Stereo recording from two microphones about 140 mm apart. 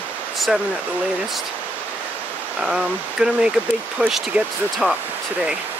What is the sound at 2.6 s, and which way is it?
Speech, 5° right (ahead or behind).